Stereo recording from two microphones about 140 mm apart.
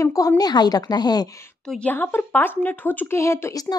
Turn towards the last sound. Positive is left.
turn(degrees=25)  # may be behind; listen again after turning